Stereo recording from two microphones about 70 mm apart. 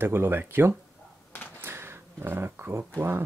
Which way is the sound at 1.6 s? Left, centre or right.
Right.